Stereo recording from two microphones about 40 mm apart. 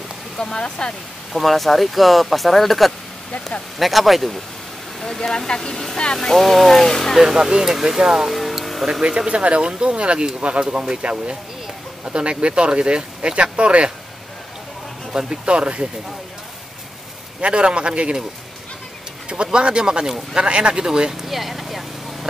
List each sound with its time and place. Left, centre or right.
0.4 s speech: centre
1.3 s speech: centre
5.0 s speech: centre
6.1 s speech: centre
7.2 s speech: centre
8.3 s a sound: centre
9.0 s speech: right
15.1 s speech: right
17.4 s speech: right
19.2 s speech: right
21.3 s vehicle: centre